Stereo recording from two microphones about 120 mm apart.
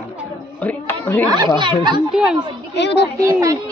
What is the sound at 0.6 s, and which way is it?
Speech, 15° left (ahead or behind).